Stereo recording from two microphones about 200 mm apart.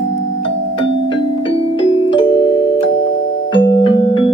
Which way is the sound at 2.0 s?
25° left (ahead or behind).